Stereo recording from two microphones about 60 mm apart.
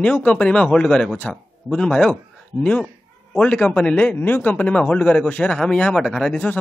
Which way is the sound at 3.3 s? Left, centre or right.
Centre.